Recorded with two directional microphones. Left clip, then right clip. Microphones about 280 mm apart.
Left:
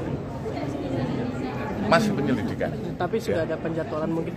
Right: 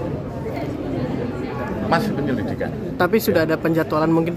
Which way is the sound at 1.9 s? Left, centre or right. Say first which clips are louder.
Even; centre.